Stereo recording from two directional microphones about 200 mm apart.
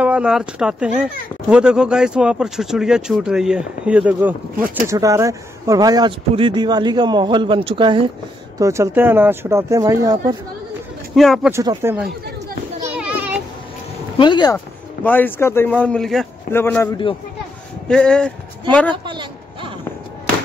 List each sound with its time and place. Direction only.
0.0 s a man's voice: 5° right (ahead or behind)
11.1 s speech: centre (ahead or behind)
11.5 s speech: 15° right (ahead or behind)
12.8 s children playing: 5° right (ahead or behind)
14.1 s speech: 25° left (ahead or behind)
15.0 s a man's voice: 10° left (ahead or behind)
19.0 s a sound: 25° right (ahead or behind)